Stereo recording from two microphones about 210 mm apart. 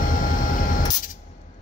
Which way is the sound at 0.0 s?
40° left (ahead or behind).